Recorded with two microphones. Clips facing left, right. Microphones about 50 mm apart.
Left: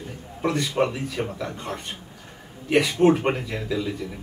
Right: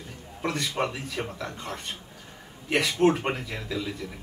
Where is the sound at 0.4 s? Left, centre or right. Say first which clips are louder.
Left 5 dB; centre.